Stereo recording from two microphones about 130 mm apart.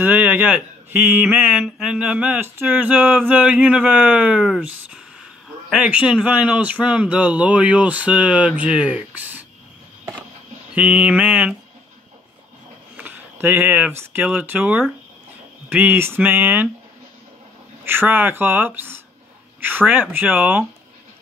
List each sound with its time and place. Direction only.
0.0 s speech: 15° right (ahead or behind)
10.7 s speech: 10° right (ahead or behind)
12.9 s speech: 15° right (ahead or behind)
17.8 s speech: 15° right (ahead or behind)